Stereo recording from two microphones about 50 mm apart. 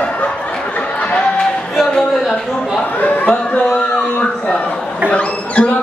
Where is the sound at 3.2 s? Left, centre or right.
Left.